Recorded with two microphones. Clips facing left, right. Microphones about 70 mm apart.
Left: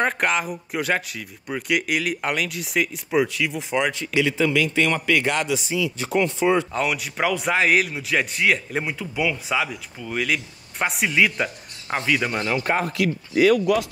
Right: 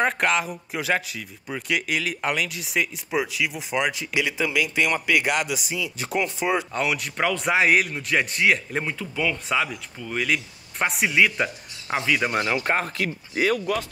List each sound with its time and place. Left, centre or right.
0.0 s speech: centre
12.3 s speech: right